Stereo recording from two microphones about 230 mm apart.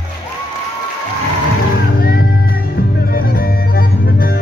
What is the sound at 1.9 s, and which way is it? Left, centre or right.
Music, left.